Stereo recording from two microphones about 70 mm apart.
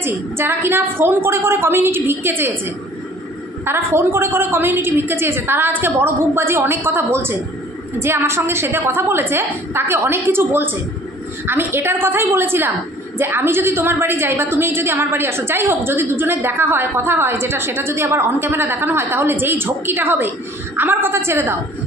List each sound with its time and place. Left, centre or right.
0.0 s a woman's voice: right